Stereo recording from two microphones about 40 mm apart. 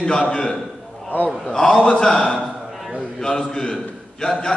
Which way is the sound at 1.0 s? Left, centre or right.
Left.